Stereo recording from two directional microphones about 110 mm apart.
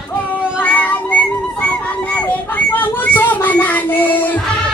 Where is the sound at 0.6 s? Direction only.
15° left (ahead or behind).